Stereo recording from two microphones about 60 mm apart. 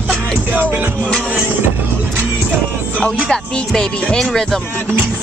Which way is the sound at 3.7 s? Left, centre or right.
Centre.